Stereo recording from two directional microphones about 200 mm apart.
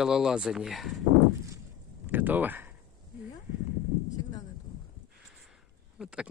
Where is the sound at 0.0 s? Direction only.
5° right (ahead or behind).